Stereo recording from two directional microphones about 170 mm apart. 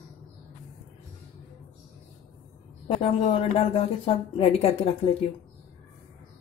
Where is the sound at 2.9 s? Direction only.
35° left (ahead or behind).